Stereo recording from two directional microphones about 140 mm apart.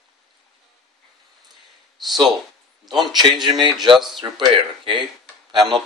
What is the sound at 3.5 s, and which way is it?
Speech, 35° right (ahead or behind).